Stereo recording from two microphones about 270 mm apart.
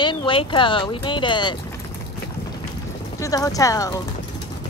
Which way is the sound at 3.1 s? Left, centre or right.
Centre.